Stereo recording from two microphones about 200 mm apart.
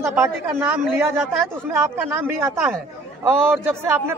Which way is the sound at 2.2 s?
Centre (ahead or behind).